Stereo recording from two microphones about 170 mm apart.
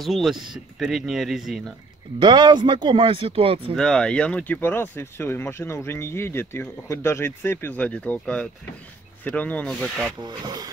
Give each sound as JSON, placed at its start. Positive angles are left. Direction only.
{"t": 0.0, "sound": "speech", "side_deg": 0}
{"t": 2.1, "sound": "speech", "side_deg": -25}
{"t": 3.7, "sound": "speech", "side_deg": 5}
{"t": 10.2, "sound": "speech", "side_deg": -25}